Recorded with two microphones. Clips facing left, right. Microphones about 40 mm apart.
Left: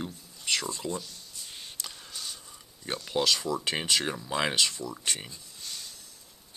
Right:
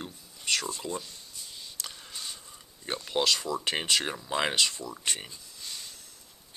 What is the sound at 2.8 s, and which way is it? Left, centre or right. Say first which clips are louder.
Speech: even; centre.